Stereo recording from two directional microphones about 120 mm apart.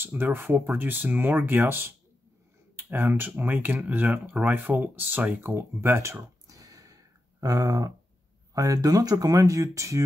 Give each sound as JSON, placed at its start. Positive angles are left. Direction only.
{"t": 0.0, "sound": "speech", "side_deg": -15}